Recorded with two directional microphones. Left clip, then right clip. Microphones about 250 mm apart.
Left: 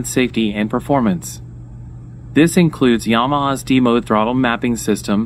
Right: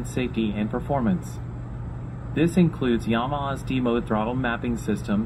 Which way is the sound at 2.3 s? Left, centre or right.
Left.